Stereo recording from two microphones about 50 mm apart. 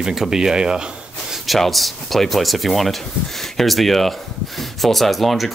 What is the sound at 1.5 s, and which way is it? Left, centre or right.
Speech, centre.